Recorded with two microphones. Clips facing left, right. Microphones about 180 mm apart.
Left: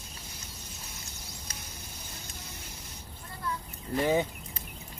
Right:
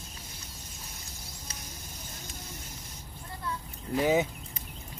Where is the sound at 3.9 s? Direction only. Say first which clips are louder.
Right 1 dB; 5° right (ahead or behind).